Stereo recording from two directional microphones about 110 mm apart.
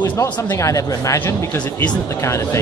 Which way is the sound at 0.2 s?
30° left (ahead or behind).